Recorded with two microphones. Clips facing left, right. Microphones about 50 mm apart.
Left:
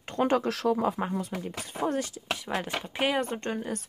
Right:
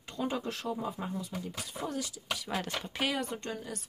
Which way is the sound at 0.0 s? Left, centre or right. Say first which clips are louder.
Left 9 dB; left.